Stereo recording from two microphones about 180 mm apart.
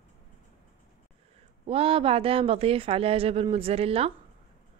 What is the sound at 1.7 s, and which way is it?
Speech, 30° right (ahead or behind).